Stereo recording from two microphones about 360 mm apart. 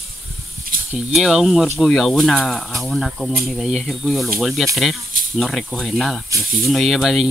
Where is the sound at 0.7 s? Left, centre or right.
Right.